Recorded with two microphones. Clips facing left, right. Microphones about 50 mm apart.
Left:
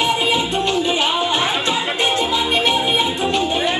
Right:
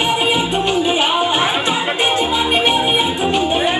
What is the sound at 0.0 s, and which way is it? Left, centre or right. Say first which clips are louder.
Music: right 1 dB; right.